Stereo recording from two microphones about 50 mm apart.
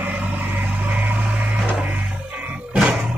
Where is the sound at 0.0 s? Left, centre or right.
Right.